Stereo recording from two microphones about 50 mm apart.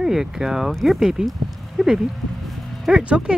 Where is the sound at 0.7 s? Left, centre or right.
Centre.